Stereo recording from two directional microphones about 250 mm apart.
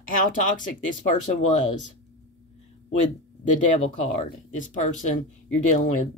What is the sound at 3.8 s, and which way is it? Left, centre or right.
Speech, left.